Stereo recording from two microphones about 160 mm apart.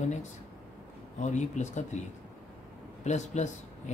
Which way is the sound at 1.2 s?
45° left (ahead or behind).